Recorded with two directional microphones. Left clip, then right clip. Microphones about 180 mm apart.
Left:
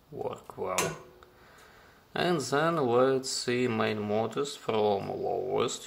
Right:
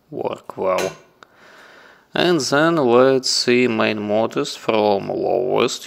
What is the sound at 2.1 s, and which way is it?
Speech, 45° right (ahead or behind).